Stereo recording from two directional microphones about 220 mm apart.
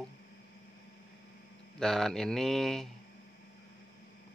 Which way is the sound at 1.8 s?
Centre (ahead or behind).